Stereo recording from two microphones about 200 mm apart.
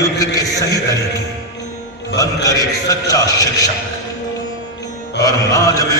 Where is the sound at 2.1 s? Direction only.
15° left (ahead or behind).